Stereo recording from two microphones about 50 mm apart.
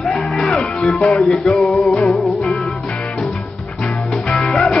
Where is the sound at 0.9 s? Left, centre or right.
Centre.